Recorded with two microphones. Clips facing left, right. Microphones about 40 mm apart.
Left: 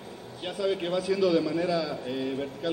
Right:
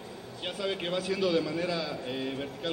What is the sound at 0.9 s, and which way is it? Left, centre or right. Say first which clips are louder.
Speech: left 3 dB; right.